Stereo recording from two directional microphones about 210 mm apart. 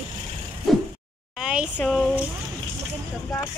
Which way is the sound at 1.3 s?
5° right (ahead or behind).